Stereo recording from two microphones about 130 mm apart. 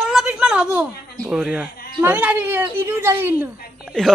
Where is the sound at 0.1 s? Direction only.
5° right (ahead or behind).